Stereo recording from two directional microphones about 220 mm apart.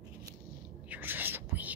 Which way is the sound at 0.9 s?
10° right (ahead or behind).